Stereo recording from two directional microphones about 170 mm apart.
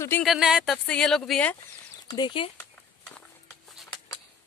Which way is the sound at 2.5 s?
5° left (ahead or behind).